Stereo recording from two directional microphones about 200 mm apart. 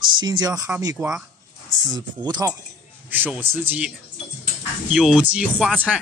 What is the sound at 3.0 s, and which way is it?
Speech, 10° right (ahead or behind).